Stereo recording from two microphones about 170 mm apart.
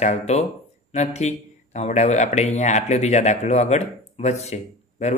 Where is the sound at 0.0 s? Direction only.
40° left (ahead or behind).